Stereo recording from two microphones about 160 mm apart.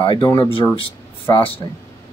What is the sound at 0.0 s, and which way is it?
Speech, 30° left (ahead or behind).